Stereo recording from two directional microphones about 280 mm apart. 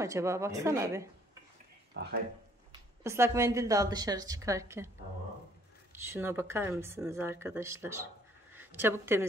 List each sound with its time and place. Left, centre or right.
0.0 s a woman's voice: centre
2.0 s speech: right
3.0 s a woman's voice: centre
6.0 s a woman's voice: centre